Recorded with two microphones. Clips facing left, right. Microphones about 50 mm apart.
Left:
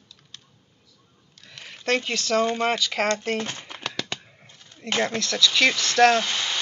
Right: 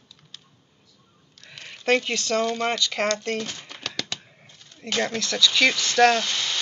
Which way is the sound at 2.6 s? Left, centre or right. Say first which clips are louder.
Left 1 dB; centre.